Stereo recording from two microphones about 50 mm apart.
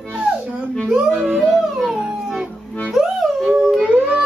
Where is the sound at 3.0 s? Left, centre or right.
Centre.